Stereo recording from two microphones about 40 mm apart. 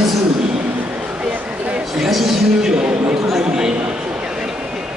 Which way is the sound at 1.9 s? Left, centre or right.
Centre.